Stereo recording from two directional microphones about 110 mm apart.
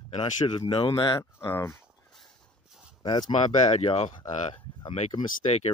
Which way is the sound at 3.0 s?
45° left (ahead or behind).